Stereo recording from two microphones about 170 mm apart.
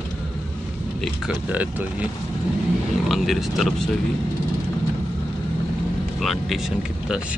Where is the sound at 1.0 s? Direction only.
5° right (ahead or behind).